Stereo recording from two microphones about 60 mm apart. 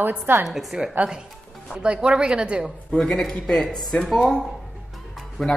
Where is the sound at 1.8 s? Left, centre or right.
Centre.